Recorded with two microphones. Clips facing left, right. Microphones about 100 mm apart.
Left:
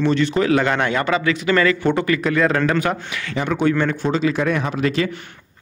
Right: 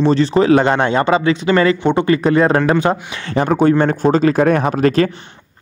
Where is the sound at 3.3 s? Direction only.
40° right (ahead or behind).